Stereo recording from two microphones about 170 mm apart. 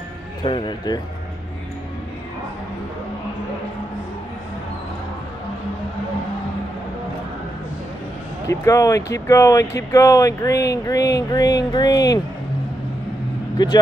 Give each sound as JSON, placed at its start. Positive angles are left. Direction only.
{"t": 0.4, "sound": "speech", "side_deg": 30}
{"t": 8.5, "sound": "speech", "side_deg": 20}
{"t": 13.6, "sound": "speech", "side_deg": 25}